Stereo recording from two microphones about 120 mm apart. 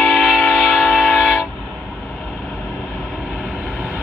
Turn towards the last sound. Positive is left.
turn(degrees=-5)  # may be behind; listen again after turning